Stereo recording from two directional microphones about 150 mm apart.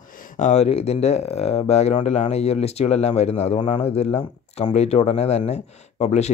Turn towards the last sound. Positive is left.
turn(degrees=45)  # may be behind; listen again after turning